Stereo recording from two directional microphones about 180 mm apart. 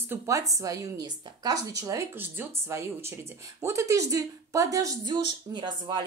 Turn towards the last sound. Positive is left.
turn(degrees=-25)  # may be behind; listen again after turning